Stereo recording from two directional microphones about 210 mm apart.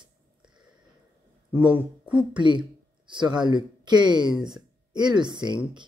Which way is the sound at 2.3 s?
20° right (ahead or behind).